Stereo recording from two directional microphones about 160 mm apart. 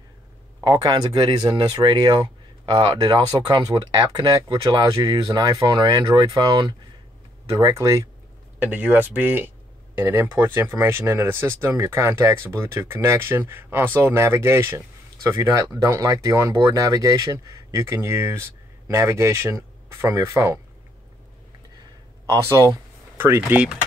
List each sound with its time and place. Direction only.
0.7 s speech: 25° right (ahead or behind)
22.2 s speech: 20° right (ahead or behind)